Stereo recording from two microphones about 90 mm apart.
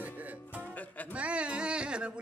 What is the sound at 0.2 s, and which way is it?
Music, 15° right (ahead or behind).